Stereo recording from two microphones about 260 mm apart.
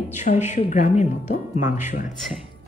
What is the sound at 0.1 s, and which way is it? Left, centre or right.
Speech, left.